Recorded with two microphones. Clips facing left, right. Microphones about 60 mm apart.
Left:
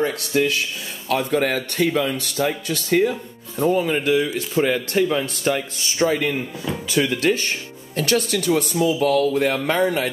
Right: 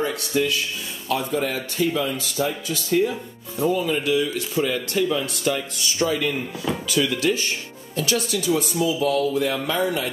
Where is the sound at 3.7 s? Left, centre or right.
Left.